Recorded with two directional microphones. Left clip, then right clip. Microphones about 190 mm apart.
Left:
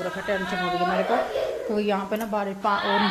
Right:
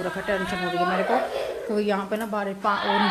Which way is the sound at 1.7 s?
Centre (ahead or behind).